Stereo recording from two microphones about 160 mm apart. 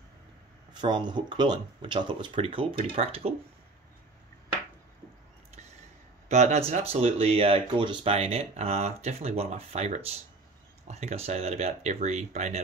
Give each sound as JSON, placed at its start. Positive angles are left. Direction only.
{"t": 0.7, "sound": "speech", "side_deg": -30}
{"t": 6.2, "sound": "speech", "side_deg": -45}